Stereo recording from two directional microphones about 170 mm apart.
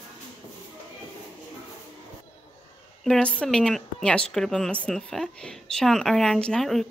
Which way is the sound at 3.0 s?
5° left (ahead or behind).